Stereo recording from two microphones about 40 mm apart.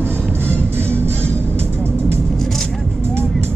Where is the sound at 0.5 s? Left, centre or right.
Right.